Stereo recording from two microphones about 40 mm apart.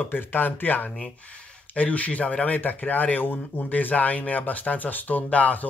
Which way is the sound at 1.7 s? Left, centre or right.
Left.